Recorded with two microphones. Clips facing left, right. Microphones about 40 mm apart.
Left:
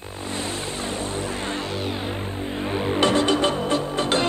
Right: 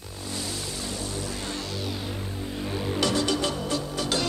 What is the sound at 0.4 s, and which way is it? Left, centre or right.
Music, left.